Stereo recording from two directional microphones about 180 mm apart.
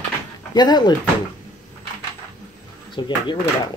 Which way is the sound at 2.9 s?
25° left (ahead or behind).